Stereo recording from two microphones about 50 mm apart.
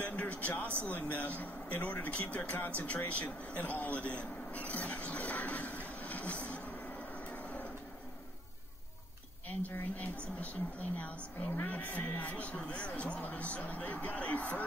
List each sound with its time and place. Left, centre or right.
0.0 s a sound: left
0.8 s speech: left
5.9 s train: left
7.2 s vehicle: left
9.5 s speech: left